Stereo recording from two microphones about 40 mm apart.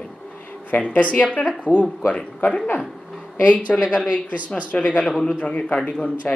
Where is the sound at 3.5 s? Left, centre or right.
Left.